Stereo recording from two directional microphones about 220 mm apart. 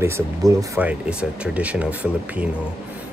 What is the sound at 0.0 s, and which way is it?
Speech, 15° right (ahead or behind).